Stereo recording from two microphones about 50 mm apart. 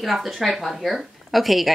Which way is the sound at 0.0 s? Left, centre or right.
Centre.